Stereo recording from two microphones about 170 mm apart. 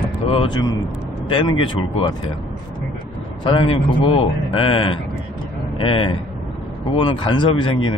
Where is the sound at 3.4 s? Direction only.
30° left (ahead or behind).